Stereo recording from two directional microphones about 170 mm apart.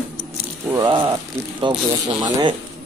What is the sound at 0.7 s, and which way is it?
Speech, 25° right (ahead or behind).